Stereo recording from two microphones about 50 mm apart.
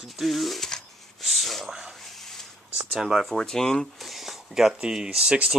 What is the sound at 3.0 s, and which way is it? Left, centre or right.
Speech, centre.